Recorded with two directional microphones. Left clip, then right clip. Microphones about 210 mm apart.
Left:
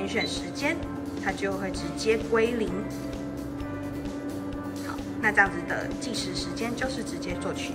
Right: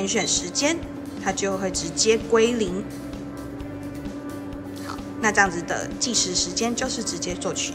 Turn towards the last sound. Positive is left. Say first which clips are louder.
# right 4 dB
turn(degrees=-5)  # may be behind; listen again after turning